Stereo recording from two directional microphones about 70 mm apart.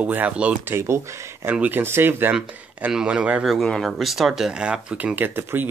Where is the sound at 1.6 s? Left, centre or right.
Right.